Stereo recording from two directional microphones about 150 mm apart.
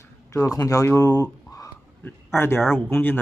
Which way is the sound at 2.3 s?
15° left (ahead or behind).